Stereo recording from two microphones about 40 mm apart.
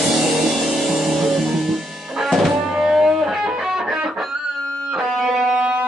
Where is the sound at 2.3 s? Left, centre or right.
Centre.